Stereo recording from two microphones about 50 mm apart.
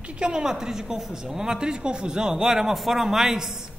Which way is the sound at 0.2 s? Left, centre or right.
Centre.